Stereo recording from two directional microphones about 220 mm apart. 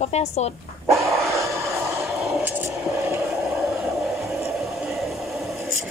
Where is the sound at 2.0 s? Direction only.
Centre (ahead or behind).